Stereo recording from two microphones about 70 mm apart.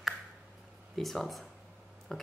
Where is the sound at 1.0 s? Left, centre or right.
Centre.